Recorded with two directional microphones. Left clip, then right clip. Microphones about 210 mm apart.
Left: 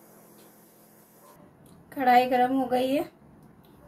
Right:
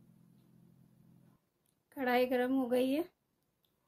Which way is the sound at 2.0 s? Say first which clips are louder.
Left 11 dB; 40° right (ahead or behind).